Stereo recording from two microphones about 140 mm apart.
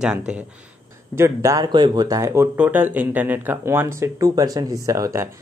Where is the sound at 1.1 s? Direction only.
20° right (ahead or behind).